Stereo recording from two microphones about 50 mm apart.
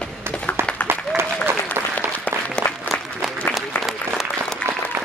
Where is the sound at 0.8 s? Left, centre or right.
Right.